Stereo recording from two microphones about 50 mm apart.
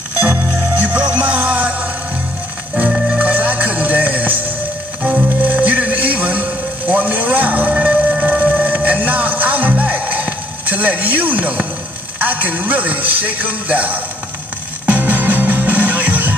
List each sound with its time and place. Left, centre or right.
0.2 s music: right
0.8 s music: right
3.2 s music: right
12.2 s a man's voice: right
14.9 s music: right